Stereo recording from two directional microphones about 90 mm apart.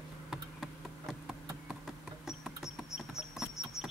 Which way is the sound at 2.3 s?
5° right (ahead or behind).